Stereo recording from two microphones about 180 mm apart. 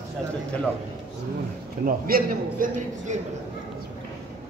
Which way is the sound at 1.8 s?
55° right (ahead or behind).